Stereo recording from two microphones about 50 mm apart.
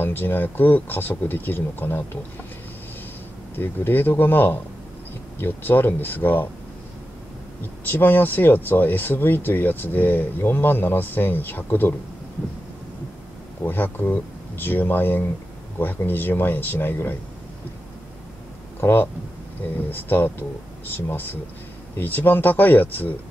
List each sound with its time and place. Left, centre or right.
0.0 s speech: left
3.5 s speech: left
7.9 s speech: left
13.7 s speech: left
18.8 s speech: left